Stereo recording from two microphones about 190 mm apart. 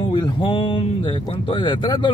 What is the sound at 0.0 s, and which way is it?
Speech, 25° left (ahead or behind).